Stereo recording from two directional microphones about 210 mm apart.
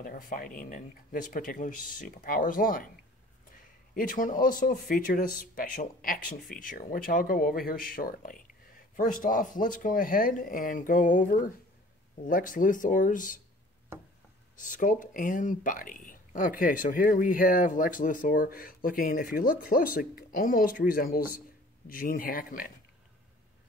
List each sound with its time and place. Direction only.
0.0 s speech: 40° left (ahead or behind)
3.9 s speech: 40° left (ahead or behind)
14.6 s speech: 40° left (ahead or behind)